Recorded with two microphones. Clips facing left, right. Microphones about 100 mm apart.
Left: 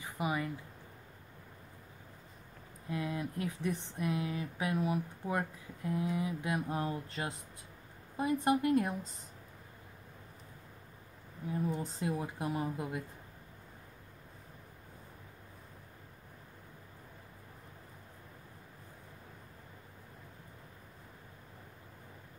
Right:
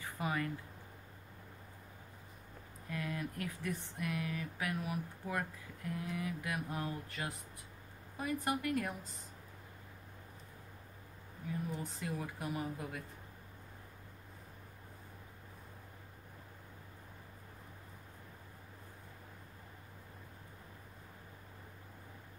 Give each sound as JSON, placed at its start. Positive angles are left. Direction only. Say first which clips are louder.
{"t": 0.0, "sound": "a sound", "louder": "left 2 dB", "side_deg": 15}
{"t": 2.9, "sound": "speech", "louder": "left 4 dB", "side_deg": 20}
{"t": 11.7, "sound": "speech", "louder": "left 5 dB", "side_deg": 25}